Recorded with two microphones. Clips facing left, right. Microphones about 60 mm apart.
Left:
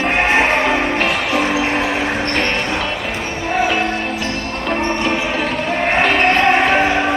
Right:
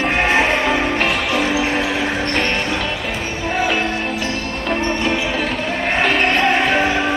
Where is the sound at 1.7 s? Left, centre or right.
Left.